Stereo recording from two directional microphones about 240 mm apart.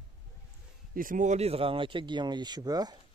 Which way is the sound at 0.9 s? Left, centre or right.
Right.